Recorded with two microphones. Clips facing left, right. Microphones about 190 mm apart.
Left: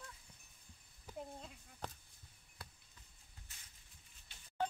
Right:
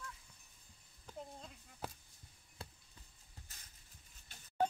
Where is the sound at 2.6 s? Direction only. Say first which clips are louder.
Right 4 dB; 25° right (ahead or behind).